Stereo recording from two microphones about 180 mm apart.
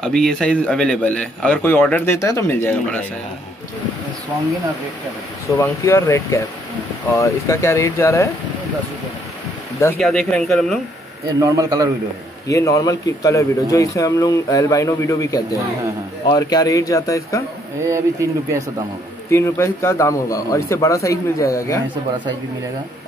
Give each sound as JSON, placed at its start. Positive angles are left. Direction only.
{"t": 0.0, "sound": "a man's voice", "side_deg": 5}
{"t": 5.6, "sound": "a man's voice", "side_deg": 15}
{"t": 9.9, "sound": "speech", "side_deg": 0}
{"t": 11.3, "sound": "speech", "side_deg": -15}
{"t": 12.4, "sound": "a man's voice", "side_deg": 20}
{"t": 17.8, "sound": "speech", "side_deg": -15}
{"t": 19.3, "sound": "a man's voice", "side_deg": 15}